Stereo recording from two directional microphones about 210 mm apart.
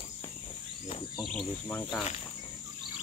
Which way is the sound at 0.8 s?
25° left (ahead or behind).